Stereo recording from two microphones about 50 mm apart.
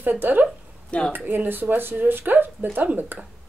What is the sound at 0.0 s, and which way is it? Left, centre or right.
A woman's voice, right.